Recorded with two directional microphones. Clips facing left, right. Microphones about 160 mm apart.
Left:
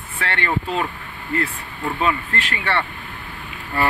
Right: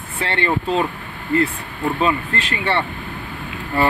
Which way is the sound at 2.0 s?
25° right (ahead or behind).